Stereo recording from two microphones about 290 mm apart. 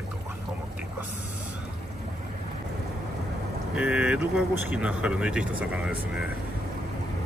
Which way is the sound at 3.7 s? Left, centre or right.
Centre.